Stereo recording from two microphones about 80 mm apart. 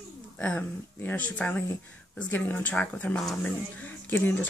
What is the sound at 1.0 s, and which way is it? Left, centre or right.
Speech, left.